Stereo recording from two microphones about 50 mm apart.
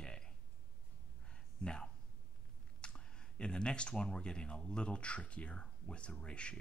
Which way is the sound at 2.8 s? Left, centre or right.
Left.